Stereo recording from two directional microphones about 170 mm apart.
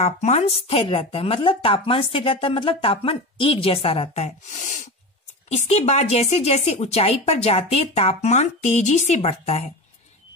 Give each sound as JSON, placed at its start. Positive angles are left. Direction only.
{"t": 0.0, "sound": "speech", "side_deg": 40}